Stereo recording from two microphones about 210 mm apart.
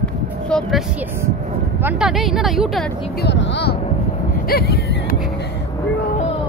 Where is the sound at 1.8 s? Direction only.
Centre (ahead or behind).